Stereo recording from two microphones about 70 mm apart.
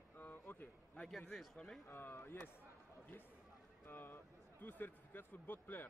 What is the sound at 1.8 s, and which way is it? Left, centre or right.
Speech, left.